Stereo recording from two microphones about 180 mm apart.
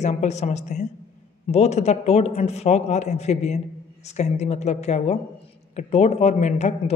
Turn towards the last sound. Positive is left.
turn(degrees=40)  # may be behind; listen again after turning